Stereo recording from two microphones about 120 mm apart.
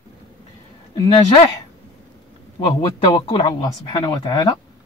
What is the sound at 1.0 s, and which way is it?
Speech, 45° left (ahead or behind).